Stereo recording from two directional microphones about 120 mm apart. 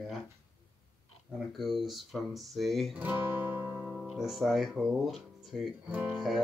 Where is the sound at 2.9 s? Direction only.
15° right (ahead or behind).